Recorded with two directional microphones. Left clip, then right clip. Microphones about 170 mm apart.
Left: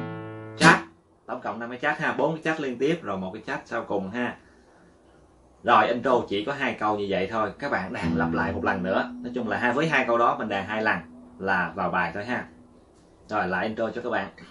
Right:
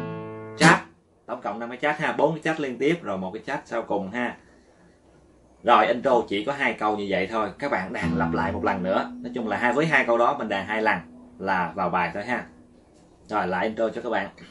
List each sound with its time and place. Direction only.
1.2 s speech: 15° right (ahead or behind)
5.6 s speech: 15° right (ahead or behind)